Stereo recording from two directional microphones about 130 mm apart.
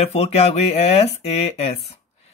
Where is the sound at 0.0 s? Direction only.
50° left (ahead or behind).